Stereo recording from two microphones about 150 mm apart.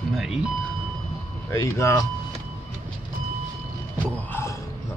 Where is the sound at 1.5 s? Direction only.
20° left (ahead or behind).